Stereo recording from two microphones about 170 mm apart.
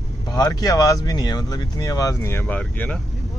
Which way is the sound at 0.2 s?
20° left (ahead or behind).